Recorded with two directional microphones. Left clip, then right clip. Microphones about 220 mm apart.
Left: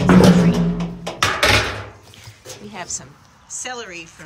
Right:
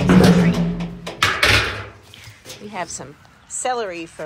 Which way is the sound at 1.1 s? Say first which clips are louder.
Even; 45° left (ahead or behind).